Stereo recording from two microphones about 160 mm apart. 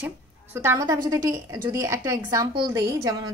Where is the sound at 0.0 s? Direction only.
15° right (ahead or behind).